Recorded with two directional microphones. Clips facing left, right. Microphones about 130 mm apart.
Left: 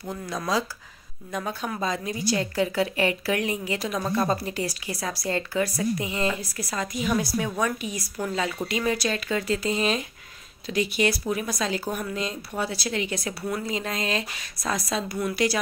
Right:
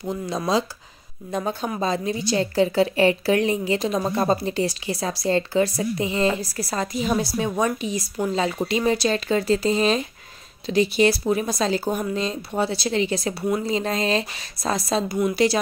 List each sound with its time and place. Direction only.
1.3 s a woman's voice: 30° right (ahead or behind)